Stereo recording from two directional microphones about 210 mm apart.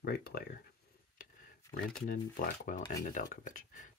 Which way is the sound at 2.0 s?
40° left (ahead or behind).